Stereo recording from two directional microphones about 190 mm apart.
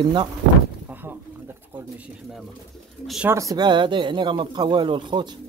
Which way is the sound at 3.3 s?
15° right (ahead or behind).